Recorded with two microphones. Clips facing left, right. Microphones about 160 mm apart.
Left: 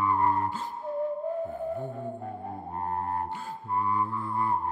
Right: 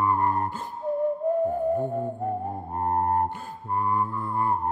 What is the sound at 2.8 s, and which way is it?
Mantra, 40° right (ahead or behind).